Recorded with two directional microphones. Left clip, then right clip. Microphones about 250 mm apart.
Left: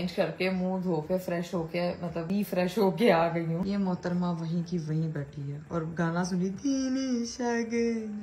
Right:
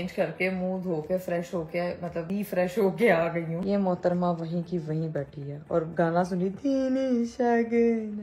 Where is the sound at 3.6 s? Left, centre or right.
Centre.